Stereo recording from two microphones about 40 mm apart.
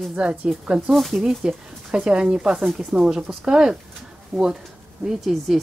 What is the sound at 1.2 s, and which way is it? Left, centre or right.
Speech, centre.